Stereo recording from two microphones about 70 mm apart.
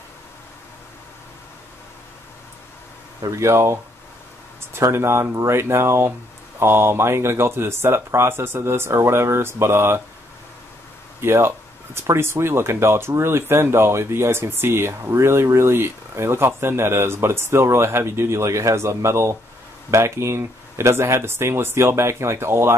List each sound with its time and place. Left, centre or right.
3.3 s speech: right
4.9 s speech: right
11.1 s speech: right